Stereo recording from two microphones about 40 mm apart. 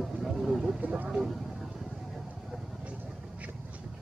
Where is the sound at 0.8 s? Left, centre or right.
Right.